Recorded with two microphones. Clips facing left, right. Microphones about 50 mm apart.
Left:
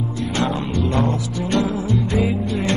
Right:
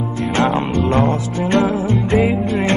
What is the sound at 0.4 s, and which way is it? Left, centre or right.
Music, right.